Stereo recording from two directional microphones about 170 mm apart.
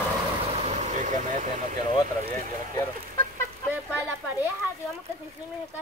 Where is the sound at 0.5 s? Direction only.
40° right (ahead or behind).